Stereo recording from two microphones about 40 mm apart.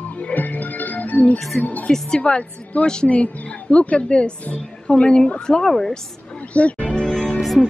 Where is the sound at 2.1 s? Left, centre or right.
Left.